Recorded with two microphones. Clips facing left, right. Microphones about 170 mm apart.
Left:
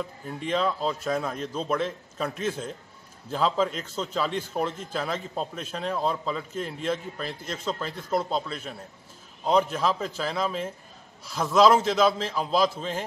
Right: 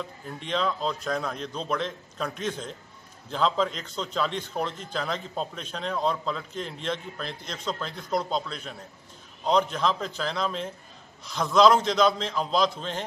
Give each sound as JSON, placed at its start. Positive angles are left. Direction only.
{"t": 0.4, "sound": "a man's voice", "side_deg": 5}